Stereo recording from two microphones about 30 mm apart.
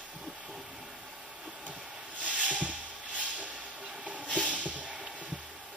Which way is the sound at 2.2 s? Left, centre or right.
Right.